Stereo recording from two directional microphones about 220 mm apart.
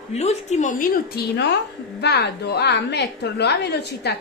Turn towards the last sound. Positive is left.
turn(degrees=50)  # may be behind; listen again after turning